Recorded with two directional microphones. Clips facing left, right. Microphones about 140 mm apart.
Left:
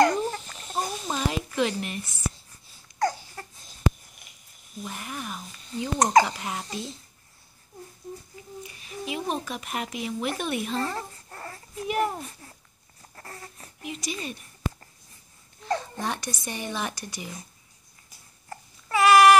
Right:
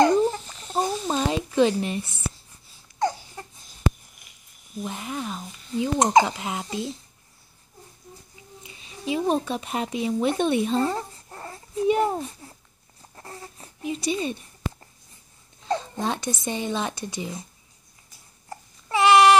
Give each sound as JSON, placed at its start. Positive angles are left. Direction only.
{"t": 0.0, "sound": "a sound", "side_deg": -25}
{"t": 4.8, "sound": "speech", "side_deg": -20}
{"t": 8.6, "sound": "speech", "side_deg": -25}
{"t": 13.1, "sound": "a sound", "side_deg": -20}
{"t": 15.7, "sound": "speech", "side_deg": -20}
{"t": 18.5, "sound": "babbling", "side_deg": -25}